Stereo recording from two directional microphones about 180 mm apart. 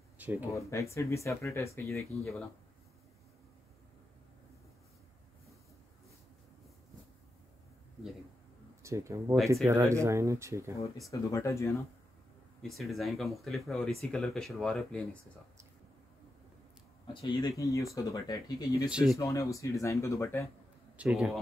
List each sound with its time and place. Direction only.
0.2 s speech: 10° right (ahead or behind)
0.5 s speech: 15° left (ahead or behind)
8.8 s speech: 15° right (ahead or behind)
11.1 s speech: 15° left (ahead or behind)
12.6 s speech: centre (ahead or behind)
17.1 s speech: 25° left (ahead or behind)
18.9 s speech: 5° right (ahead or behind)
19.1 s speech: 15° left (ahead or behind)
21.0 s speech: 5° right (ahead or behind)